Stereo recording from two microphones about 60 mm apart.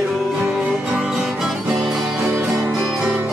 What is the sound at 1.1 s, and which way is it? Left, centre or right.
Music, centre.